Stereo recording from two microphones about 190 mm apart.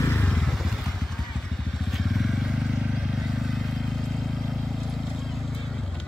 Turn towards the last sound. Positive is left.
turn(degrees=0)  # may be behind; listen again after turning